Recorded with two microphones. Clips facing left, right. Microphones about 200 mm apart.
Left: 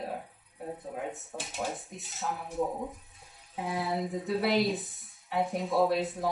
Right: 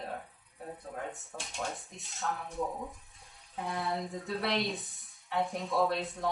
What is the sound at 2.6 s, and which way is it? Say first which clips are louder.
Speech: left 6 dB; 20° left (ahead or behind).